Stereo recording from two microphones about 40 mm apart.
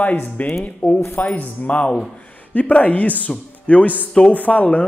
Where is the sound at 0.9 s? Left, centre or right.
Left.